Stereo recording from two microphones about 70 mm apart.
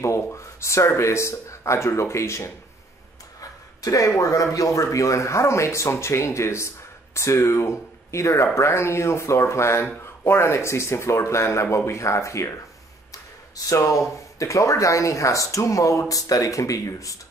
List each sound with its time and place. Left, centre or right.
0.0 s speech: left
3.3 s a sound: left
4.2 s speech: left
13.7 s speech: left